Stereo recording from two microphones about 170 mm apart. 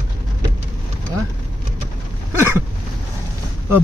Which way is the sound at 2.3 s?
15° right (ahead or behind).